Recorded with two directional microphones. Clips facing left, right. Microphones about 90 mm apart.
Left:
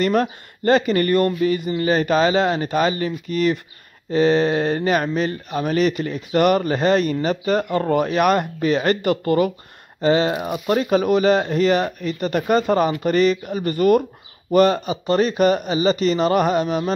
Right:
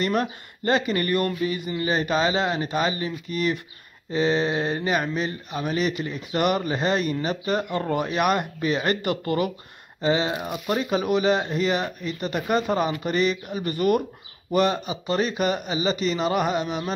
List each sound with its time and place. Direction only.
0.0 s speech: 40° left (ahead or behind)